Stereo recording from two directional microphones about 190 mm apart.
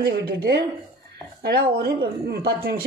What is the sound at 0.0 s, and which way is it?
Speech, 55° right (ahead or behind).